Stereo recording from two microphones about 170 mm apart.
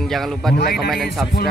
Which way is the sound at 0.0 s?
Centre (ahead or behind).